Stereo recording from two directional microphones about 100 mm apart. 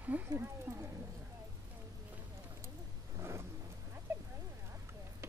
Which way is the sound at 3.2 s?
25° right (ahead or behind).